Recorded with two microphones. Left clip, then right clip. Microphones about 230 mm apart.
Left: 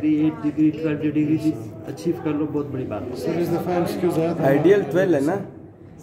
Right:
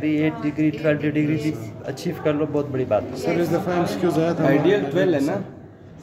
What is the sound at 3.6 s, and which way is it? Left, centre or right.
Speech, centre.